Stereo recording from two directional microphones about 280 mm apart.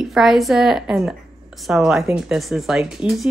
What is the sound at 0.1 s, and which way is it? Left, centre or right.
A woman's voice, centre.